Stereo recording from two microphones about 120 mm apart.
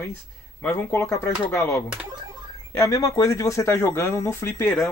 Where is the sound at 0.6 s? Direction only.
20° left (ahead or behind).